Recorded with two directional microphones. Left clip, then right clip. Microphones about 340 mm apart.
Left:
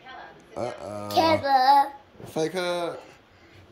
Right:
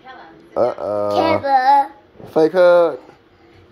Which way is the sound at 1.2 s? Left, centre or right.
Centre.